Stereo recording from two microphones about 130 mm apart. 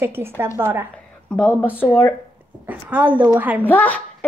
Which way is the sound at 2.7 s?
10° right (ahead or behind).